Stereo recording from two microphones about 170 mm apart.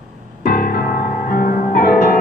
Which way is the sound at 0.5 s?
60° left (ahead or behind).